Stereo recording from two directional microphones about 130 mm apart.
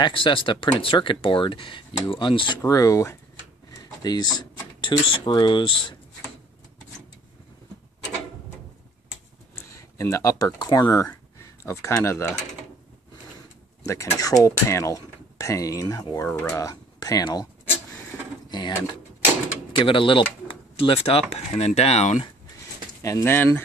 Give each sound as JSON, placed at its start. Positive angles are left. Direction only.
{"t": 0.0, "sound": "speech", "side_deg": 40}
{"t": 2.6, "sound": "speech", "side_deg": 25}
{"t": 9.6, "sound": "speech", "side_deg": 25}
{"t": 13.8, "sound": "speech", "side_deg": 20}
{"t": 16.3, "sound": "speech", "side_deg": 15}
{"t": 19.8, "sound": "speech", "side_deg": 40}
{"t": 23.0, "sound": "speech", "side_deg": 20}